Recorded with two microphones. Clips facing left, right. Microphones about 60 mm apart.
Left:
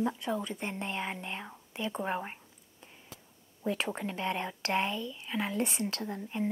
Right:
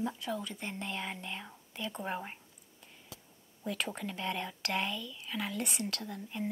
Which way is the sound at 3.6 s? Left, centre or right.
Left.